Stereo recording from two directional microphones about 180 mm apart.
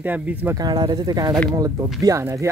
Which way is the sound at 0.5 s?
20° right (ahead or behind).